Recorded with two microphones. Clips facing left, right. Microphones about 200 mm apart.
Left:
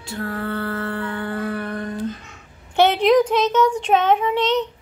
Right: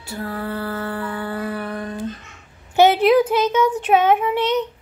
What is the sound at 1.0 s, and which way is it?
Music, 5° right (ahead or behind).